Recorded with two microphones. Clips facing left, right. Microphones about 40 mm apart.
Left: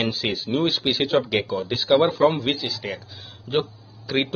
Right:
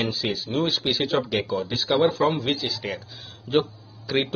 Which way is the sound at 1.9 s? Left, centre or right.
Centre.